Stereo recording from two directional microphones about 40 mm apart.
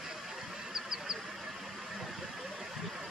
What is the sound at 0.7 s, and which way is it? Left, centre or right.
Vehicle, centre.